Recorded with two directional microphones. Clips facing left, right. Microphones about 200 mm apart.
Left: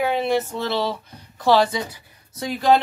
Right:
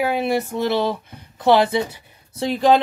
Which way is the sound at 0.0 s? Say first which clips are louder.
Right 1 dB; 10° right (ahead or behind).